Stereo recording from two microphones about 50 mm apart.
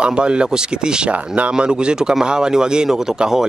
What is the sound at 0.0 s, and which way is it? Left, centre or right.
Speech, right.